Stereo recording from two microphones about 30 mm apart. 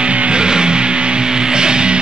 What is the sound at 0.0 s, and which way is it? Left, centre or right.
Music, right.